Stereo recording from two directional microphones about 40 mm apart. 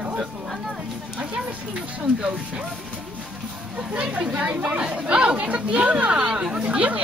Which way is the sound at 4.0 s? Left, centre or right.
Right.